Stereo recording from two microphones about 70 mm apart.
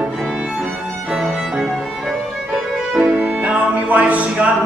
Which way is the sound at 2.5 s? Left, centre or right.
Centre.